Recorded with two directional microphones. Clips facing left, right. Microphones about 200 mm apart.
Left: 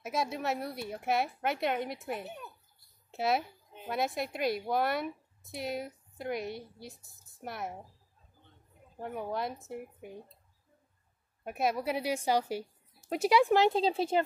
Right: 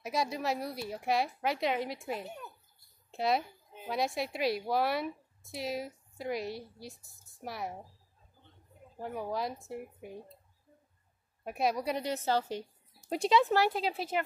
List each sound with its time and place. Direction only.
0.0 s a woman's voice: centre (ahead or behind)
8.9 s a woman's voice: centre (ahead or behind)
11.4 s a woman's voice: centre (ahead or behind); by 14.2 s 25° left (ahead or behind)